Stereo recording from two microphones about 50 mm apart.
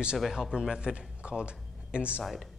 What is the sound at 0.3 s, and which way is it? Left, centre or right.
Speech, centre.